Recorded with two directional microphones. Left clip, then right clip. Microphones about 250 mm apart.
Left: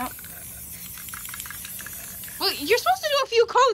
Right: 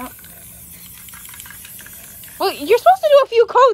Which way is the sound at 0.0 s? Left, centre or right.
Centre.